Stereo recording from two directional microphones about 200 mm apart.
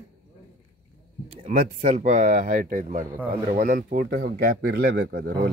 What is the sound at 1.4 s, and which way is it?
Speech, 40° right (ahead or behind).